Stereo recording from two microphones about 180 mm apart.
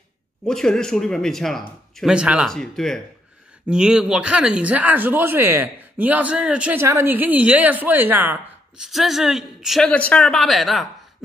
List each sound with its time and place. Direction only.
0.5 s speech: 5° left (ahead or behind)